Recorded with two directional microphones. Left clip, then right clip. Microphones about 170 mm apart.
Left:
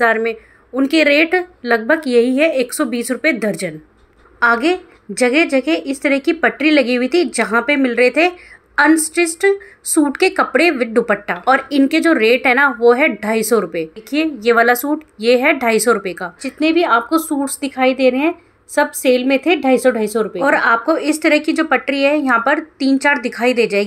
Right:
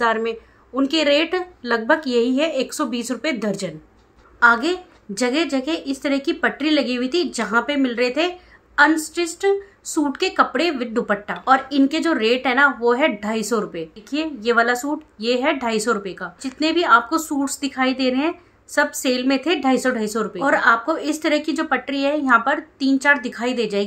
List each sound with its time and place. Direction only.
0.0 s a woman's voice: 15° left (ahead or behind)